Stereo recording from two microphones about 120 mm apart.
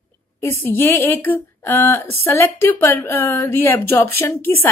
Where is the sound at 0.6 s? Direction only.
20° left (ahead or behind).